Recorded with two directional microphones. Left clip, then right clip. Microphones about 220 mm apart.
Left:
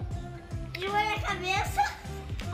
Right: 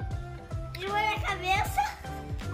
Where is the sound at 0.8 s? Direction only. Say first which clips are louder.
Even; 5° left (ahead or behind).